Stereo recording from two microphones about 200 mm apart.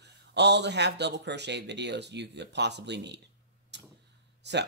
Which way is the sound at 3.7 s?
60° right (ahead or behind).